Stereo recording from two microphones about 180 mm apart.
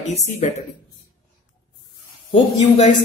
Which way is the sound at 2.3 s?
40° left (ahead or behind).